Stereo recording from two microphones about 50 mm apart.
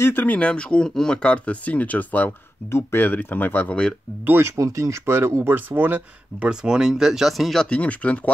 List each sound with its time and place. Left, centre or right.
0.0 s speech: left
0.3 s speech: left
2.7 s speech: left
4.3 s speech: right
4.6 s speech: right
5.1 s speech: right
6.5 s speech: centre
7.7 s speech: left